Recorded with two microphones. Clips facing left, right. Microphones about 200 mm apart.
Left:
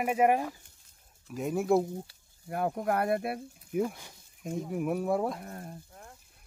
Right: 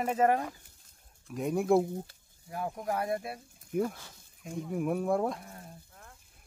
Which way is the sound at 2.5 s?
60° left (ahead or behind).